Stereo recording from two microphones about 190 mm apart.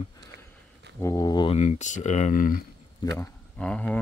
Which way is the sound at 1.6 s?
40° left (ahead or behind).